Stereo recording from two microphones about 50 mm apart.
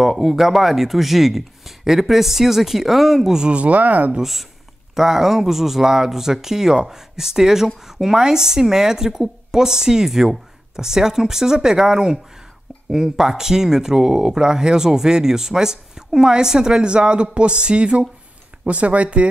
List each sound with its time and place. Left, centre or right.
0.0 s speech: centre
3.5 s speech: right
4.2 s speech: centre; by 19.2 s right